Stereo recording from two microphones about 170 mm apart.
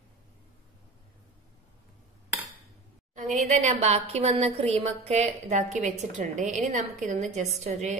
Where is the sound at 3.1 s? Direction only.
45° right (ahead or behind).